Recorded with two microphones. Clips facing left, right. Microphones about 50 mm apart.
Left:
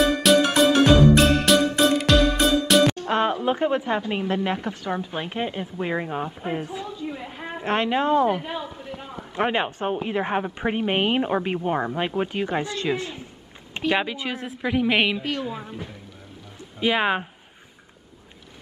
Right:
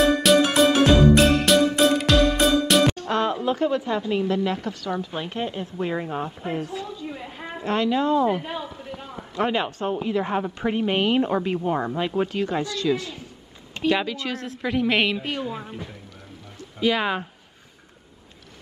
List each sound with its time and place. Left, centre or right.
0.0 s music: centre
3.1 s a sound: left
3.4 s a woman's voice: left
7.1 s a sound: centre
7.6 s speech: left
8.3 s a woman's voice: centre
8.9 s a sound: centre
10.0 s a woman's voice: left; by 15.1 s centre
15.1 s a woman's voice: centre
16.8 s a woman's voice: left